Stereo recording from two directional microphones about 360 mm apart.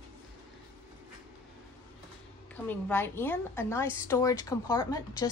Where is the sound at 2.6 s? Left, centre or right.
Centre.